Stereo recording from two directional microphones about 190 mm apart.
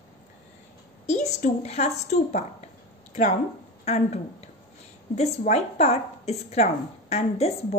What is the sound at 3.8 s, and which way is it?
A woman's voice, 35° left (ahead or behind).